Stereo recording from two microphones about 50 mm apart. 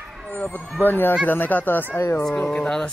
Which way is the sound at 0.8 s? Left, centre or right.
Left.